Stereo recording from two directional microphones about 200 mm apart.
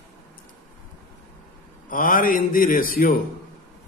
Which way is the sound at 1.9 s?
45° left (ahead or behind).